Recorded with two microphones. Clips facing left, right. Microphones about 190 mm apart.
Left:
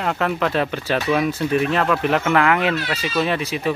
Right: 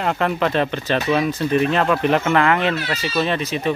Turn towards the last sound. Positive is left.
turn(degrees=10)  # may be behind; listen again after turning